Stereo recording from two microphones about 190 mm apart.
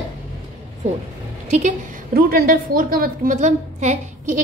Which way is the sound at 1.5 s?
40° right (ahead or behind).